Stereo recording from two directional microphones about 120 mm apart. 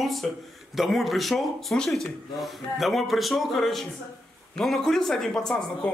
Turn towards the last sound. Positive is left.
turn(degrees=5)  # may be behind; listen again after turning